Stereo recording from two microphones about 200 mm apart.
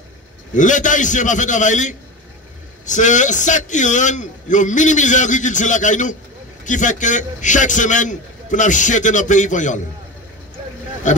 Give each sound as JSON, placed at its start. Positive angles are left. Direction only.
{"t": 0.6, "sound": "a man's voice", "side_deg": 40}
{"t": 11.1, "sound": "a man's voice", "side_deg": 35}